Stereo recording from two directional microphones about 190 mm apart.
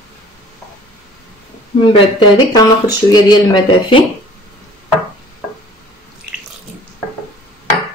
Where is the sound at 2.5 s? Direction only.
20° left (ahead or behind).